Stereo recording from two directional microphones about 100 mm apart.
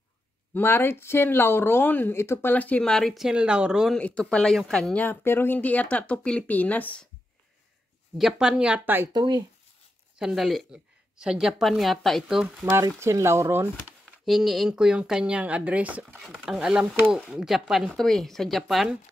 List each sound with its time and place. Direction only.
0.6 s speech: 20° left (ahead or behind); by 3.9 s 10° right (ahead or behind)
4.0 s speech: 10° left (ahead or behind)
4.9 s speech: 15° left (ahead or behind)
8.2 s speech: 5° right (ahead or behind)
8.8 s speech: 20° right (ahead or behind)
9.1 s speech: 45° right (ahead or behind)
10.1 s a woman's voice: 5° right (ahead or behind)
12.8 s speech: 30° right (ahead or behind)
14.0 s a woman's voice: centre (ahead or behind)